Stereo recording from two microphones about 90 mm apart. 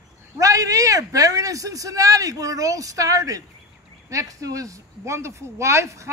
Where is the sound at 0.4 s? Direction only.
40° right (ahead or behind).